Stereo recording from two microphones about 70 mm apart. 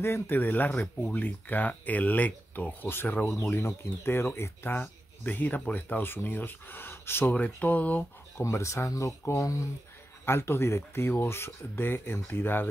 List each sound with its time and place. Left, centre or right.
0.0 s speech: left
3.6 s speech: left
8.4 s speech: left
10.2 s speech: left